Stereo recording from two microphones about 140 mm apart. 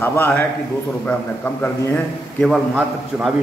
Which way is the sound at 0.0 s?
15° left (ahead or behind).